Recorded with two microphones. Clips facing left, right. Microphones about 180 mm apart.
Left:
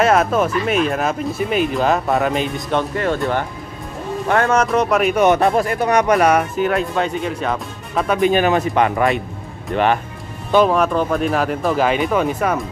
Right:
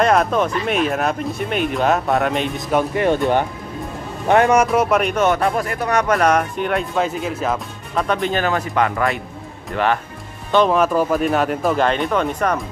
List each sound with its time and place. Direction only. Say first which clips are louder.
0.0 s speech: left 1 dB; 5° left (ahead or behind)
2.9 s speech: right 3 dB; 20° right (ahead or behind)
4.3 s speech: right 3 dB; 15° right (ahead or behind)
4.6 s speech: left 1 dB; centre (ahead or behind)
5.1 s speech: left 3 dB; 15° left (ahead or behind)
10.5 s speech: left 1 dB; 5° left (ahead or behind)